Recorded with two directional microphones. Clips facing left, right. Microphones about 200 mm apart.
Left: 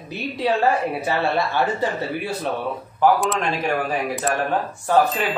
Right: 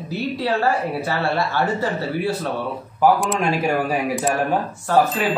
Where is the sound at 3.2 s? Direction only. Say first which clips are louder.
Right 2 dB; 5° right (ahead or behind).